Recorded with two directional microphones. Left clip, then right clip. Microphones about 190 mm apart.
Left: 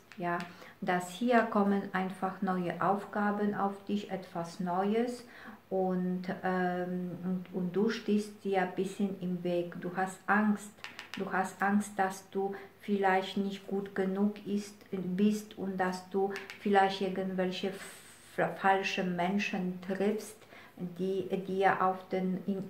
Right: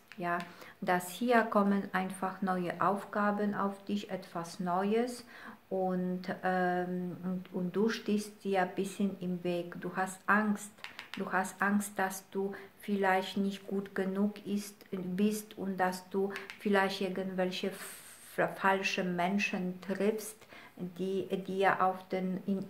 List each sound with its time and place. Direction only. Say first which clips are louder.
0.8 s speech: even; 35° right (ahead or behind)
10.8 s a sound: left 1 dB; 10° right (ahead or behind)
11.2 s speech: even; 40° right (ahead or behind)